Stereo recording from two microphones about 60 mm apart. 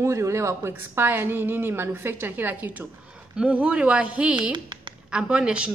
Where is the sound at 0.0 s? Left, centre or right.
Right.